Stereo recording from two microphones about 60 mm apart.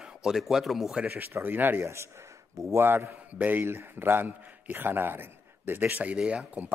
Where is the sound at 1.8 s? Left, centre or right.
Right.